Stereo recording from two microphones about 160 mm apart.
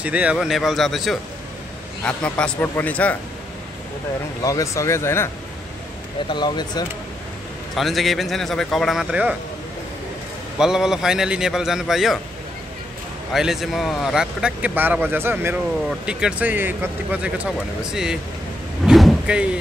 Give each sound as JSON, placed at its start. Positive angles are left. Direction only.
{"t": 0.0, "sound": "a man's voice", "side_deg": -10}
{"t": 4.4, "sound": "speech", "side_deg": 20}
{"t": 6.2, "sound": "speech", "side_deg": 30}
{"t": 7.7, "sound": "speech", "side_deg": 0}
{"t": 10.6, "sound": "speech", "side_deg": -5}
{"t": 13.3, "sound": "speech", "side_deg": 0}
{"t": 18.9, "sound": "vehicle", "side_deg": 0}